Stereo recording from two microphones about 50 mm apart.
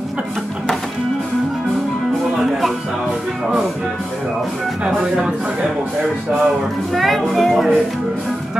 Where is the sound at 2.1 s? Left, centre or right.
Centre.